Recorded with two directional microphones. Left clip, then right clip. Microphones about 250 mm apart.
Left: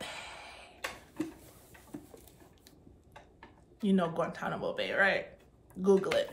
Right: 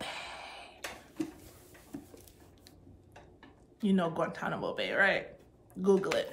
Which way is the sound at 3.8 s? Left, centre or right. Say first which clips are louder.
Even; centre.